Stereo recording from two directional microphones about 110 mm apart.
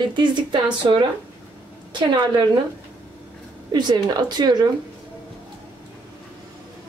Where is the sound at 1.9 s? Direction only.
45° right (ahead or behind).